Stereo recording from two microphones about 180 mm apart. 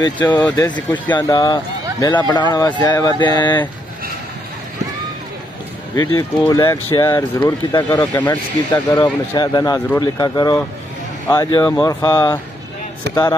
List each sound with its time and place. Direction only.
0.0 s speech: 20° left (ahead or behind)
0.5 s speech: 10° left (ahead or behind)
0.7 s speech: 25° left (ahead or behind)
5.9 s speech: 20° left (ahead or behind)